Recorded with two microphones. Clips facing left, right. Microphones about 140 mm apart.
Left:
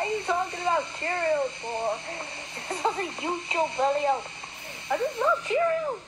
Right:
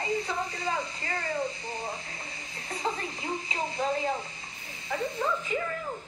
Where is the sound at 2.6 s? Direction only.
65° left (ahead or behind).